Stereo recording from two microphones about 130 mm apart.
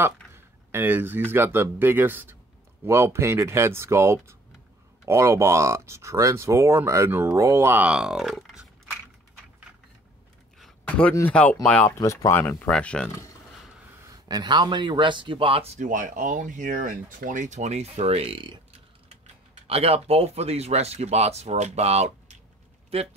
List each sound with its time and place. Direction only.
0.0 s a sound: 20° right (ahead or behind)
1.3 s speech: 15° right (ahead or behind); by 8.6 s centre (ahead or behind)
11.2 s speech: 10° left (ahead or behind)
11.9 s speech: 25° left (ahead or behind); by 13.1 s 5° left (ahead or behind)
14.0 s a man's voice: 30° right (ahead or behind); by 15.8 s 50° right (ahead or behind)
15.8 s speech: 90° right; by 18.6 s 40° right (ahead or behind)
19.7 s a man's voice: 50° right (ahead or behind)